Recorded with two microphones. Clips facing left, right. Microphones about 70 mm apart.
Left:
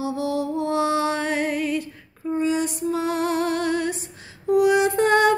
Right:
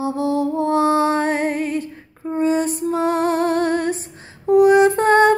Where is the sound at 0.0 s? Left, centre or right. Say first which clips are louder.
Right 5 dB; right.